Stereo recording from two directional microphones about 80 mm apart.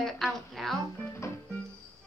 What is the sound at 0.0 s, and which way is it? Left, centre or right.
Speech, centre.